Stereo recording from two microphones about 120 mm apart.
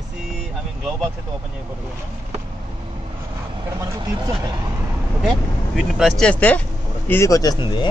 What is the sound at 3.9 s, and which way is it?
Speech, 30° right (ahead or behind).